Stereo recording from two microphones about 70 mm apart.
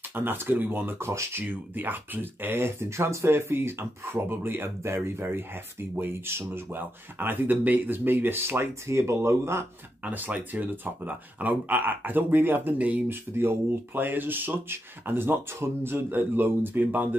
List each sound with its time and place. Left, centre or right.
0.1 s speech: right
1.0 s speech: right
1.4 s speech: right
10.0 s speech: right
13.1 s speech: right